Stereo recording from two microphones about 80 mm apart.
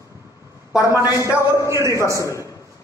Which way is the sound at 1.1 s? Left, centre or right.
Left.